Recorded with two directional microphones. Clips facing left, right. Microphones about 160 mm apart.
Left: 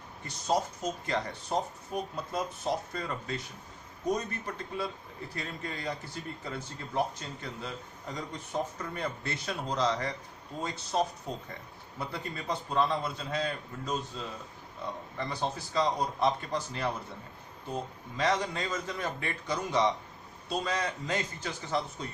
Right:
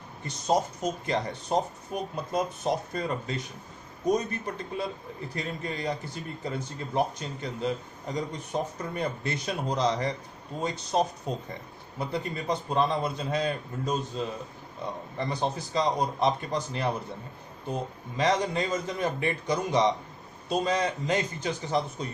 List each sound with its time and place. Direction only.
0.3 s a man's voice: 20° right (ahead or behind)
5.3 s a man's voice: 20° right (ahead or behind)